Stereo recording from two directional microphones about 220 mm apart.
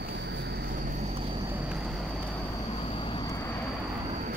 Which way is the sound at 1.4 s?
10° right (ahead or behind).